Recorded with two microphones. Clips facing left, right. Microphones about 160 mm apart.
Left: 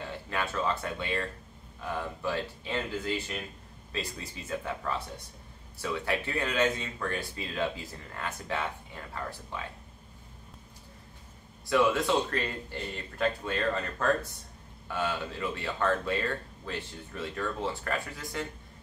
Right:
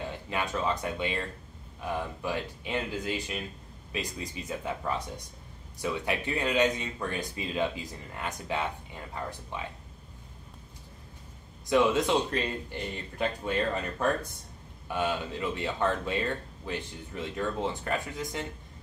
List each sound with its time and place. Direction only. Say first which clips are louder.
0.0 s speech: right 1 dB; 15° right (ahead or behind)
11.7 s speech: right 1 dB; 20° right (ahead or behind)